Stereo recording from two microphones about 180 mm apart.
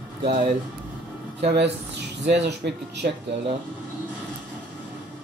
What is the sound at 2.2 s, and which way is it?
Speech, 75° right (ahead or behind).